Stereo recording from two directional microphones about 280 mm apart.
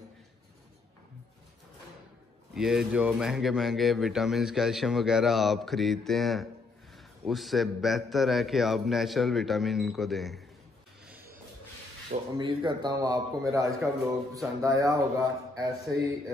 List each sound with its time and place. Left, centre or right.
2.5 s speech: centre
12.1 s a man's voice: centre